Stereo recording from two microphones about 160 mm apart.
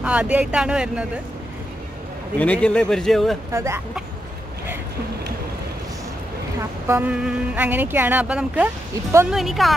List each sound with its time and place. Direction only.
0.0 s speech: 5° right (ahead or behind)
2.3 s speech: 10° left (ahead or behind)
3.5 s speech: 15° right (ahead or behind)
6.9 s a woman's voice: 10° right (ahead or behind)